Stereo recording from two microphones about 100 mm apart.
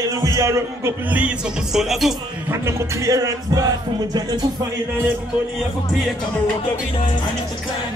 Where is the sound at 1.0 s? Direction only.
15° right (ahead or behind).